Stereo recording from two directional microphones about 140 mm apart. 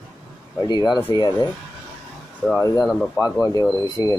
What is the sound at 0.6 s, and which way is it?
Speech, 30° left (ahead or behind).